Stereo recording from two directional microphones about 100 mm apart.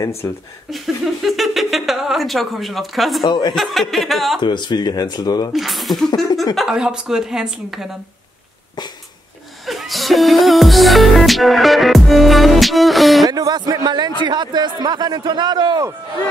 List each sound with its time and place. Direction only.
0.2 s speech: 30° left (ahead or behind)
0.7 s speech: centre (ahead or behind)
3.3 s speech: 45° left (ahead or behind)
3.5 s speech: centre (ahead or behind)
4.4 s speech: 50° left (ahead or behind)
5.5 s speech: centre (ahead or behind)
9.7 s music: centre (ahead or behind)
13.3 s a man's voice: 40° right (ahead or behind)